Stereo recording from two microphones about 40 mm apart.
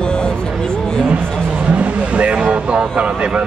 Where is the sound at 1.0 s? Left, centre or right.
Right.